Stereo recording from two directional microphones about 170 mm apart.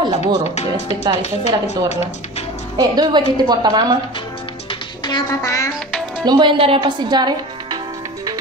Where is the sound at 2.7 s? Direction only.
25° right (ahead or behind).